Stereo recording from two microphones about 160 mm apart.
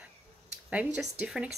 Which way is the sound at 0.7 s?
5° right (ahead or behind).